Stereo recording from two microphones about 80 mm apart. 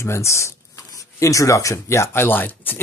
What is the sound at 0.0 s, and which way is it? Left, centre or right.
Speech, left.